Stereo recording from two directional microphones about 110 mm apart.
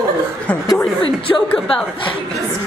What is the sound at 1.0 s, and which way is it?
Speech, 55° left (ahead or behind).